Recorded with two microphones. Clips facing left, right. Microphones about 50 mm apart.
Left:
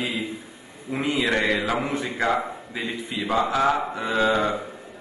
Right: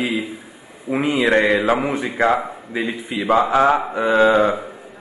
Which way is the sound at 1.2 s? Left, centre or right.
Right.